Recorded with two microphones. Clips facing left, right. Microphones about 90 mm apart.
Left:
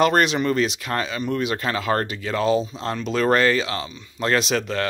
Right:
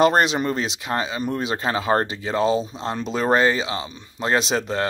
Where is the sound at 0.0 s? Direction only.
25° right (ahead or behind).